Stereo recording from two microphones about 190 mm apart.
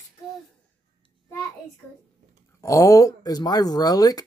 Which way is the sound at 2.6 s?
15° left (ahead or behind).